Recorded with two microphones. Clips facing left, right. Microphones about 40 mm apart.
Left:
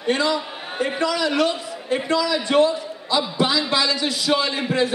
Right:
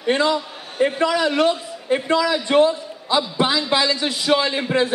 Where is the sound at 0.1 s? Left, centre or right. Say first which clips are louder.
Right 2 dB; right.